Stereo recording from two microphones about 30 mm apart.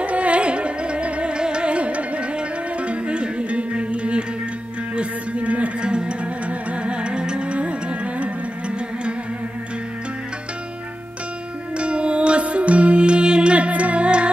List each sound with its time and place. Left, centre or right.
0.0 s music: right
1.3 s music: right
5.8 s music: right
11.7 s music: right
13.6 s music: right